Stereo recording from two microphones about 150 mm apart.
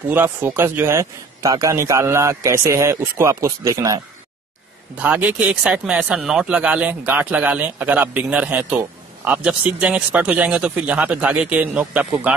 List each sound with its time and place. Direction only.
0.1 s a man's voice: 15° right (ahead or behind)
4.9 s speech: 10° right (ahead or behind)